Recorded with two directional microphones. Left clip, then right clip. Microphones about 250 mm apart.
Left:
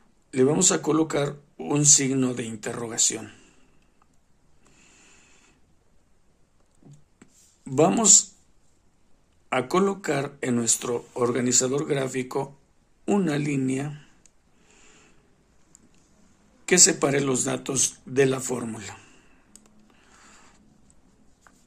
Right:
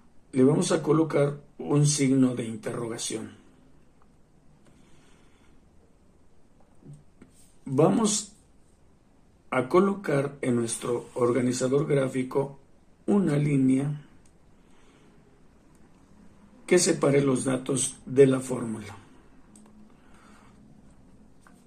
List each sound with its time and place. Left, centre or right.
0.3 s speech: left
7.7 s speech: left
9.5 s speech: left
16.6 s speech: left